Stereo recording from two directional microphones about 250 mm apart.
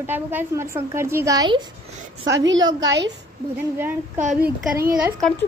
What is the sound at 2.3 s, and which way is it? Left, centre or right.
Speech, right.